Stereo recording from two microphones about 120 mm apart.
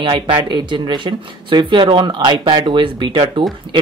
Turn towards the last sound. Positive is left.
turn(degrees=-45)  # may be behind; listen again after turning